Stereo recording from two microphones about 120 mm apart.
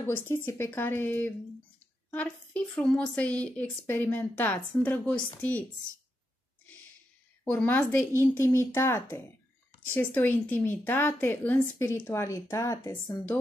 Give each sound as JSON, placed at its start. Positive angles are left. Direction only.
{"t": 0.0, "sound": "a woman's voice", "side_deg": 20}
{"t": 6.6, "sound": "snort", "side_deg": 15}
{"t": 7.4, "sound": "a woman's voice", "side_deg": 15}